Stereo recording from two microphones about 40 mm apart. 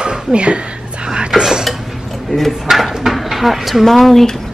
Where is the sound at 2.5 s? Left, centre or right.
Centre.